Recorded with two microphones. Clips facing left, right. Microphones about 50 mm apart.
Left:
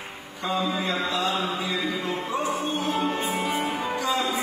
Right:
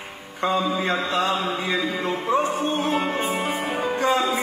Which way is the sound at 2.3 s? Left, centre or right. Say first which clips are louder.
Right 6 dB; right.